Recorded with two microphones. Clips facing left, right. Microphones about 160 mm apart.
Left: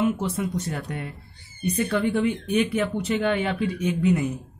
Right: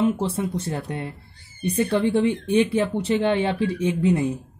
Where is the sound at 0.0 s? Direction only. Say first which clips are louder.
Right 2 dB; 30° right (ahead or behind).